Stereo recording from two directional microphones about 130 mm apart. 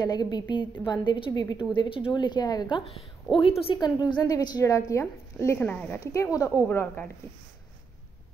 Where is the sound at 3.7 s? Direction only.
35° left (ahead or behind).